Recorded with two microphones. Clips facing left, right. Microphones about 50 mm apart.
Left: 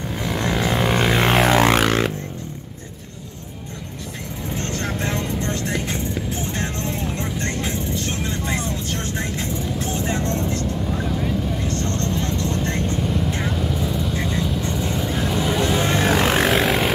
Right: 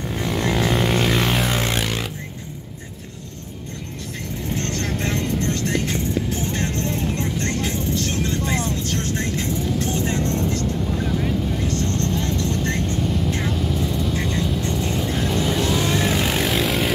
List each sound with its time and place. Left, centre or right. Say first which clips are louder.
0.1 s vehicle: right 1 dB; centre
1.3 s music: left 7 dB; left
1.8 s a sound: left 6 dB; left
4.6 s vehicle: left 1 dB; centre
10.9 s vehicle: right 1 dB; centre
11.6 s vehicle: right 1 dB; left
11.9 s vehicle: right 1 dB; centre
12.6 s vehicle: even; centre
15.8 s vehicle: left 1 dB; left
16.5 s vehicle: left 2 dB; centre